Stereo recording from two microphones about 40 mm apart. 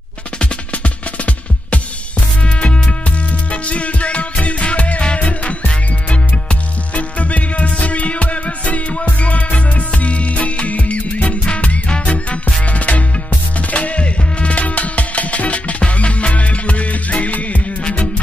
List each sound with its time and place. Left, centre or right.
0.4 s music: left